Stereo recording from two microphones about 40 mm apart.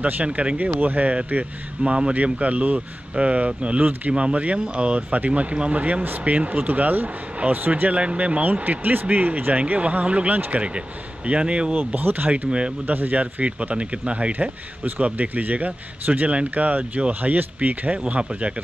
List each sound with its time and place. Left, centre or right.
0.0 s a man's voice: right
0.7 s speech: right
1.1 s a man's voice: right
2.2 s a man's voice: right
8.0 s a man's voice: right
11.8 s speech: right
12.4 s a man's voice: right
12.8 s speech: right
13.2 s a man's voice: right